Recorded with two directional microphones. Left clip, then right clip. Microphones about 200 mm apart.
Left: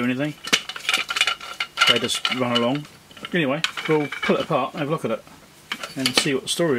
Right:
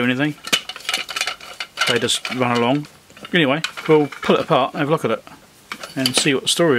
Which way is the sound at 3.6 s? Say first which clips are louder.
Left 1 dB; centre (ahead or behind).